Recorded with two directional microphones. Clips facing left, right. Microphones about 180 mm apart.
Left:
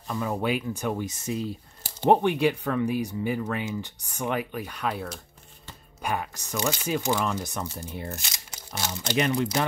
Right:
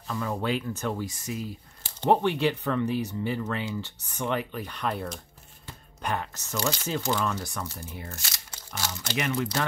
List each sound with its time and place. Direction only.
0.1 s speech: 15° left (ahead or behind)
2.0 s speech: 15° left (ahead or behind)